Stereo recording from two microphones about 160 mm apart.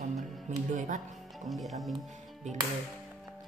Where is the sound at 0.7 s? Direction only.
50° right (ahead or behind).